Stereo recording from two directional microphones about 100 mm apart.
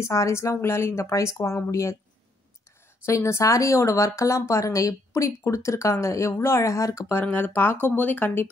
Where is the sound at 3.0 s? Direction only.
30° left (ahead or behind).